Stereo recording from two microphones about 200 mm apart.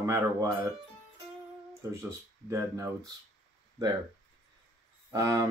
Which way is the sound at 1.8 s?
15° right (ahead or behind).